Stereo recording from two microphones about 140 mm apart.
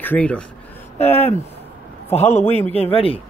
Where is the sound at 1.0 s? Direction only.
50° left (ahead or behind).